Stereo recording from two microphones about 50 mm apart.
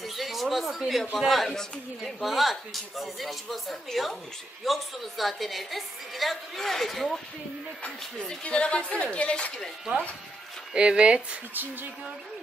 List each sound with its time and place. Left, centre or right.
0.0 s a sound: centre
1.2 s a man's voice: centre
8.5 s a woman's voice: left
10.7 s speech: centre